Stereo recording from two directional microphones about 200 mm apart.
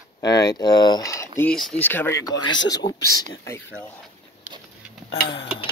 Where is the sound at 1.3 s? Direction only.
5° left (ahead or behind).